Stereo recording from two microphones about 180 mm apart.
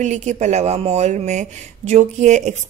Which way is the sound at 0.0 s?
40° right (ahead or behind).